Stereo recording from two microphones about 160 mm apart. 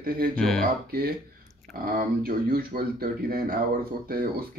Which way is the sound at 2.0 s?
70° right (ahead or behind).